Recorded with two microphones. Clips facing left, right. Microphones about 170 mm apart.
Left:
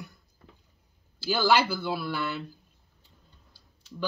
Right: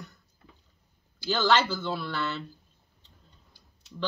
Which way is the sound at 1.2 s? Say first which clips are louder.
Left 1 dB; 10° left (ahead or behind).